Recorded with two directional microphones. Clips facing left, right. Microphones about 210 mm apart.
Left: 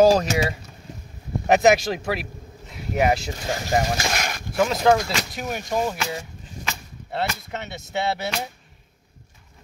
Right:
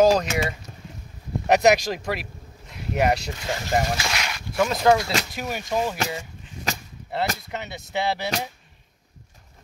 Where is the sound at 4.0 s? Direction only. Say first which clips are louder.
Left 3 dB; 45° left (ahead or behind).